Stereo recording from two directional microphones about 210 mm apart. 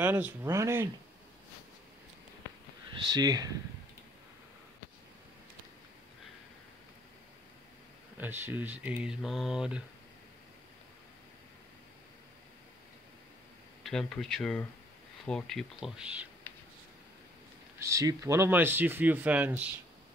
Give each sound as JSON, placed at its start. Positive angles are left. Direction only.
{"t": 0.0, "sound": "speech", "side_deg": -10}
{"t": 2.9, "sound": "speech", "side_deg": -20}
{"t": 8.2, "sound": "speech", "side_deg": -10}
{"t": 13.8, "sound": "speech", "side_deg": 0}
{"t": 17.7, "sound": "speech", "side_deg": -15}